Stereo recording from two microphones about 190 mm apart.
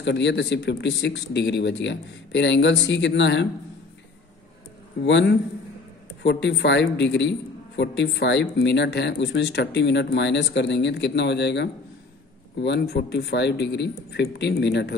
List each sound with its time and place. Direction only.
0.0 s a man's voice: 65° left (ahead or behind)
5.0 s a man's voice: 65° left (ahead or behind)